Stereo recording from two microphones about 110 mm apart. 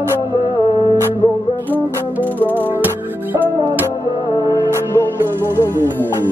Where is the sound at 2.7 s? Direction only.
15° right (ahead or behind).